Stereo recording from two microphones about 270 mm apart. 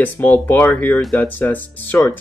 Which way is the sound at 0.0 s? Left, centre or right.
Centre.